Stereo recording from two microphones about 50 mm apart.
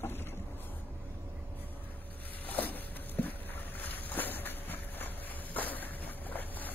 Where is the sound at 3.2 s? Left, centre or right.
Left.